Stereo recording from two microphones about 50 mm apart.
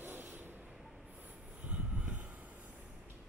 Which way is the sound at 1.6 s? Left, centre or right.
Right.